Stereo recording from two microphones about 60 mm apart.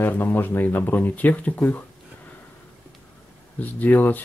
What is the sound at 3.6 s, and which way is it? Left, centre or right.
Speech, left.